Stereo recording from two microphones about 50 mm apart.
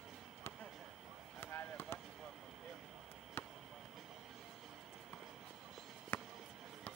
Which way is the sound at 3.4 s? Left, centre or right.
Left.